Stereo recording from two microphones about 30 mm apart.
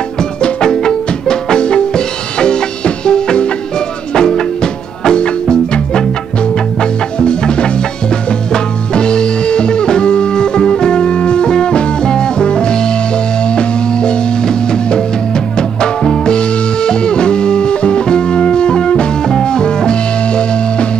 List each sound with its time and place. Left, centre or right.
0.4 s music: left